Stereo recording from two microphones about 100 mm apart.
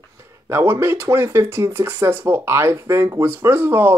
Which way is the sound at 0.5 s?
25° right (ahead or behind).